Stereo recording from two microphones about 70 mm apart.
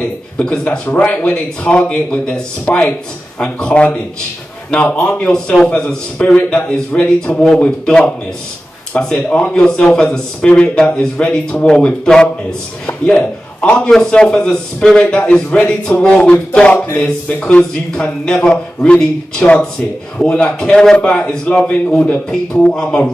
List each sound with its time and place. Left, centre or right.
0.4 s a man's voice: centre